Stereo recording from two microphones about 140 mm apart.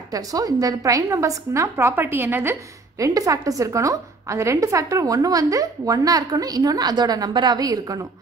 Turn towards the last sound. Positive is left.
turn(degrees=-25)  # may be behind; listen again after turning